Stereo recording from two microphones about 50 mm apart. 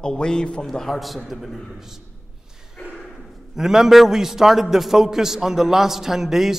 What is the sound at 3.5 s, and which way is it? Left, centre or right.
A man's voice, centre.